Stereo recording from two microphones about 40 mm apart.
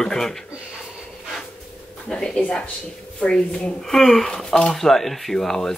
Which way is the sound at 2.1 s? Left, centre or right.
Centre.